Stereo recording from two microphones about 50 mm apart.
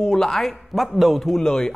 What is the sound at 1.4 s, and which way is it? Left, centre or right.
Speech, centre.